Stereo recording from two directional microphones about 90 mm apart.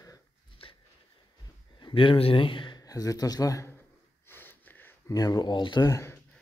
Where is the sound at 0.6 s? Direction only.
90° left.